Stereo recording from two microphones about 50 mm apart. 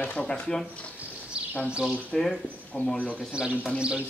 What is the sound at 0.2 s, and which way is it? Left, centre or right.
Speech, centre.